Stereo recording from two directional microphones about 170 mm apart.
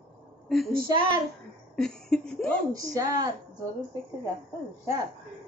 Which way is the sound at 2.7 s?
20° right (ahead or behind).